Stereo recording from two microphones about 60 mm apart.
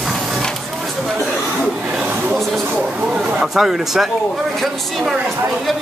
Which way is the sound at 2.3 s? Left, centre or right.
Centre.